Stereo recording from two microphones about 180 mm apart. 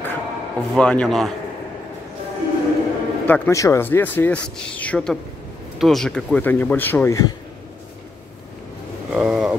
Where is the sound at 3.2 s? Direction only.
10° left (ahead or behind).